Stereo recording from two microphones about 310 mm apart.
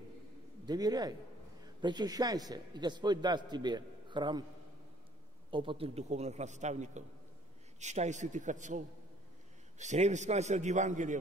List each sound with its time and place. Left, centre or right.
0.7 s a man's voice: centre
5.5 s a man's voice: centre